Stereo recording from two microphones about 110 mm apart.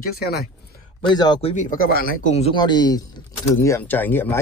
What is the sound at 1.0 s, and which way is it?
Speech, 40° left (ahead or behind).